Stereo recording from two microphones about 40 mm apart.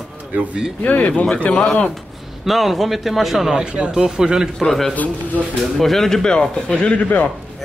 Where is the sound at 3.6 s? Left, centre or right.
Right.